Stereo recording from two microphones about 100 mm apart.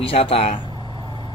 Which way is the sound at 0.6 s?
50° right (ahead or behind).